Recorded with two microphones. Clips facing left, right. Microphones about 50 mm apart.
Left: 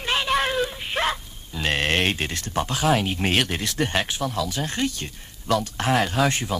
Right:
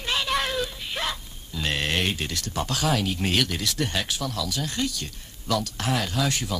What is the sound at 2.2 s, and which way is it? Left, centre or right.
Speech, left.